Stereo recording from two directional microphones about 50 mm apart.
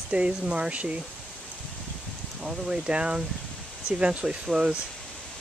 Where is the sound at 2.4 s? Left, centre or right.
Centre.